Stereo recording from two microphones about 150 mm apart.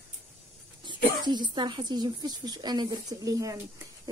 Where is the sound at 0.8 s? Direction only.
30° right (ahead or behind).